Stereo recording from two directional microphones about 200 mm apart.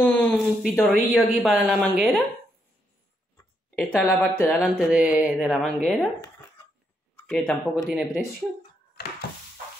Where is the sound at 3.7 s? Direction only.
Centre (ahead or behind).